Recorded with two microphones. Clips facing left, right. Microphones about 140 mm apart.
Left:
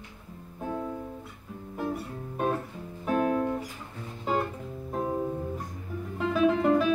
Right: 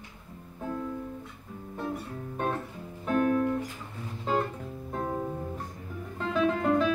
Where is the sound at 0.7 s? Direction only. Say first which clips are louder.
Left 1 dB; 20° left (ahead or behind).